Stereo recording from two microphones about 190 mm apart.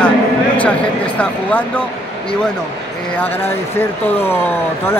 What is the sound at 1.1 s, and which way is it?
Speech, 10° left (ahead or behind).